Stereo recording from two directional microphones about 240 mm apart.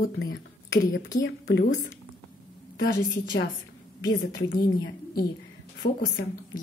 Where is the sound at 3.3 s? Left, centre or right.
Left.